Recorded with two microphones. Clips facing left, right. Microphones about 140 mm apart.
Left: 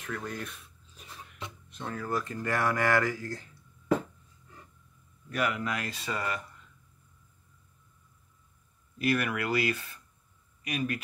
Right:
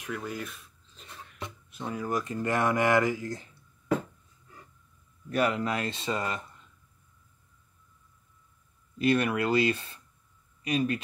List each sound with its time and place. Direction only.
0.0 s speech: 10° right (ahead or behind)
1.7 s speech: 10° right (ahead or behind)
5.3 s speech: 30° right (ahead or behind)
8.9 s speech: 25° right (ahead or behind)